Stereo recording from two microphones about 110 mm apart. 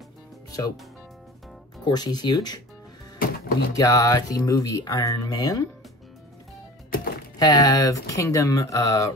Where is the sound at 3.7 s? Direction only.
30° left (ahead or behind).